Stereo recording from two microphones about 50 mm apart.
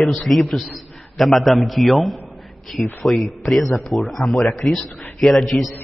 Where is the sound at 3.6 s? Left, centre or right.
Left.